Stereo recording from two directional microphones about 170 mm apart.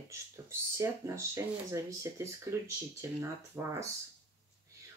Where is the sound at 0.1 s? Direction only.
15° right (ahead or behind).